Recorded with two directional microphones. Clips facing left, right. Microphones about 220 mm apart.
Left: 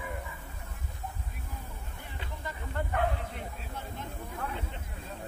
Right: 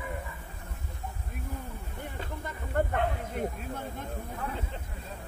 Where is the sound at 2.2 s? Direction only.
50° right (ahead or behind).